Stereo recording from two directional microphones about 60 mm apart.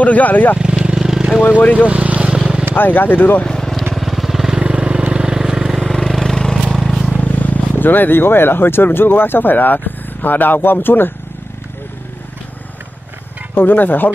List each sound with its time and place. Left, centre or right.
0.0 s speech: left
0.8 s vehicle: centre
1.6 s speech: left
1.9 s boat: right
2.3 s vehicle: centre
2.7 s speech: left
3.4 s vehicle: centre
5.8 s vehicle: centre
7.1 s speech: left
13.6 s speech: left